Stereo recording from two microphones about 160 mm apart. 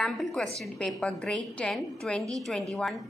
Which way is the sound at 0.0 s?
Centre (ahead or behind).